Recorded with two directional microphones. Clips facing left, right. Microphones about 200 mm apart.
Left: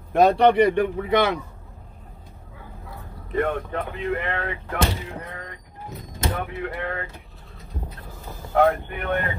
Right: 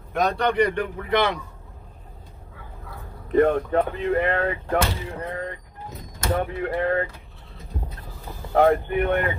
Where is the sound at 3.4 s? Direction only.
40° right (ahead or behind).